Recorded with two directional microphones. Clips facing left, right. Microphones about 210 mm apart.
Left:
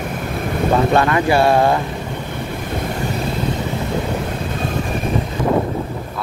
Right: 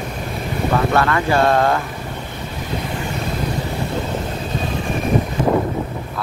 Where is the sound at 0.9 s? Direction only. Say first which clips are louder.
Left 2 dB; 20° left (ahead or behind).